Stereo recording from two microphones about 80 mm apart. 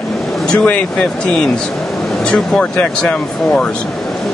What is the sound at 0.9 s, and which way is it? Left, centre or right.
Speech, centre.